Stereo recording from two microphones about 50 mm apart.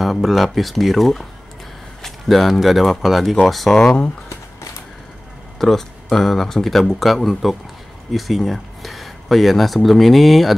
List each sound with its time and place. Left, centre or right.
0.0 s speech: centre
3.7 s speech: centre
5.6 s speech: centre